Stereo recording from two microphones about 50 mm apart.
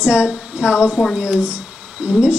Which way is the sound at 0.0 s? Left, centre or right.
Right.